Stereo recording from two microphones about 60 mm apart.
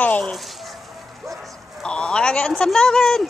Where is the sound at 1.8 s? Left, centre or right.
Centre.